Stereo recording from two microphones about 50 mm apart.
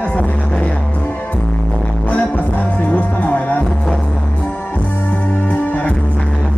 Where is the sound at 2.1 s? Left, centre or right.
Left.